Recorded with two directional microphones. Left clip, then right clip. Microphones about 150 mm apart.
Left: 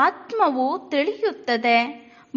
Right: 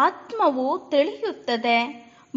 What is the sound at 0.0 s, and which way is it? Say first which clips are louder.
A woman's voice: left 1 dB; 20° left (ahead or behind).